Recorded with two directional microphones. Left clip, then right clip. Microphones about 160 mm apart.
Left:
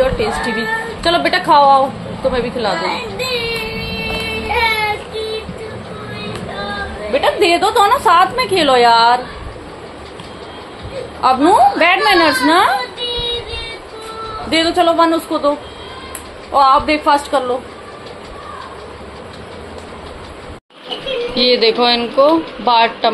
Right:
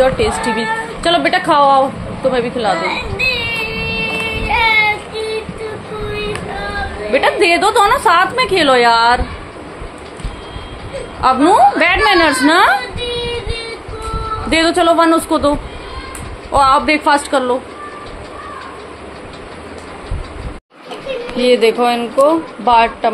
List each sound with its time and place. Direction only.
0.4 s speech: 20° right (ahead or behind)
2.8 s child singing: 10° left (ahead or behind)
7.1 s a woman's voice: 25° right (ahead or behind)
11.1 s a woman's voice: 15° right (ahead or behind)
14.5 s speech: 35° right (ahead or behind)
16.5 s a woman's voice: 30° right (ahead or behind)
21.4 s speech: 10° right (ahead or behind)